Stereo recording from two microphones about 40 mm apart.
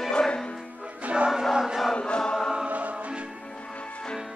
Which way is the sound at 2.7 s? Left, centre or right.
Right.